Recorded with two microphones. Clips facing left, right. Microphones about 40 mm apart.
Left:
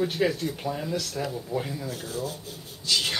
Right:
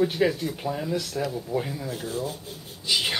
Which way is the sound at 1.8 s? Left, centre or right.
Centre.